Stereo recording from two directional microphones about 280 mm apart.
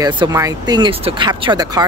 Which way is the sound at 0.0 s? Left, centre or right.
Centre.